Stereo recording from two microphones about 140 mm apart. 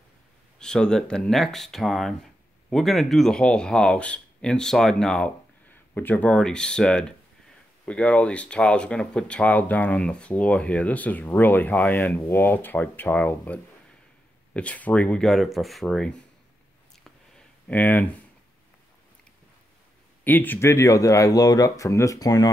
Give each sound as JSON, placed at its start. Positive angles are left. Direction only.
{"t": 0.6, "sound": "speech", "side_deg": 5}
{"t": 17.6, "sound": "speech", "side_deg": 10}
{"t": 20.2, "sound": "speech", "side_deg": 15}